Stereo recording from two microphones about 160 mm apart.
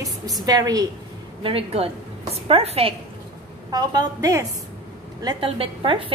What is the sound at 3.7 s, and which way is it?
Speech, 20° right (ahead or behind).